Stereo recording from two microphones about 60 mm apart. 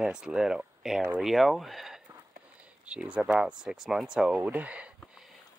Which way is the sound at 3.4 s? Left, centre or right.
Centre.